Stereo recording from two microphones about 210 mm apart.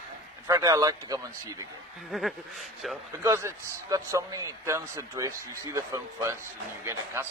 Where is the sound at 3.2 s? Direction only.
15° right (ahead or behind).